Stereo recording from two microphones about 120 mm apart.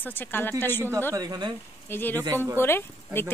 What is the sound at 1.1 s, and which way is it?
Speech, 35° right (ahead or behind).